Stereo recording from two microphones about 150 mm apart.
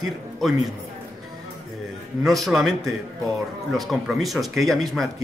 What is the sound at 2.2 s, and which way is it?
A man's voice, centre (ahead or behind).